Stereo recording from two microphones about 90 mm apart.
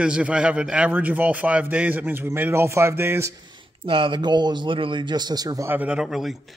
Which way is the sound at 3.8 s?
70° right (ahead or behind).